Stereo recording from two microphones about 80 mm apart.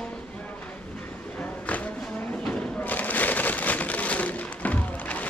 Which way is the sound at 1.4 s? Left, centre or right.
Centre.